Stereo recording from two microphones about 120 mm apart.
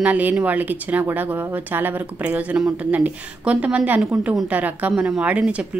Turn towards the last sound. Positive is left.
turn(degrees=-10)  # may be behind; listen again after turning